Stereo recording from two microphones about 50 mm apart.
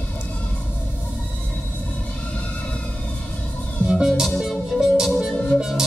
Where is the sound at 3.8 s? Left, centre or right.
Centre.